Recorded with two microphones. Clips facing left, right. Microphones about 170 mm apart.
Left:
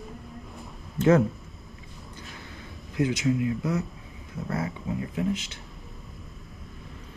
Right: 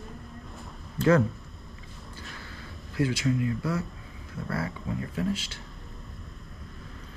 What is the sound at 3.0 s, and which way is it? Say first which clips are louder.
Speech: left 2 dB; 20° left (ahead or behind).